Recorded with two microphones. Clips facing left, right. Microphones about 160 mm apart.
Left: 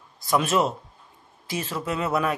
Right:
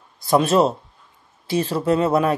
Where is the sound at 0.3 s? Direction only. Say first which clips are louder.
Right 6 dB; 35° right (ahead or behind).